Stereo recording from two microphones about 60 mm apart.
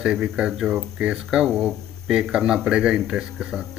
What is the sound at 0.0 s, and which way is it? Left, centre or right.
Speech, centre.